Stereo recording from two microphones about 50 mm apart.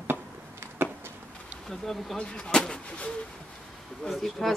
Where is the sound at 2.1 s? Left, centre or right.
Centre.